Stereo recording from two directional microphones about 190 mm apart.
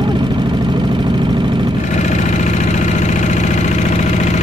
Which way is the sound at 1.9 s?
40° left (ahead or behind).